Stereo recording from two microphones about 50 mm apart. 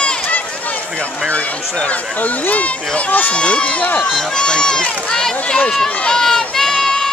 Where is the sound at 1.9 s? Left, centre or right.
Left.